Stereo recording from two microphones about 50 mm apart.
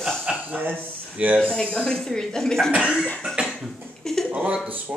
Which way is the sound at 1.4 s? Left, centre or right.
Centre.